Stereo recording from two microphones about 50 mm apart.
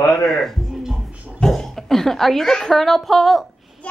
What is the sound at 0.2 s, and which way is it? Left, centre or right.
Speech, centre.